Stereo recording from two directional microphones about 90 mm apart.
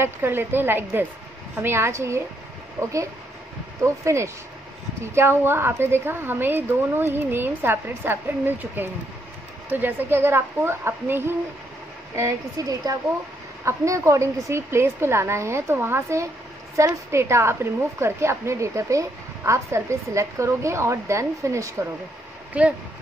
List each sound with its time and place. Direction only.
0.0 s a woman's voice: 25° right (ahead or behind)
12.2 s a woman's voice: 40° right (ahead or behind)
22.5 s speech: 15° right (ahead or behind)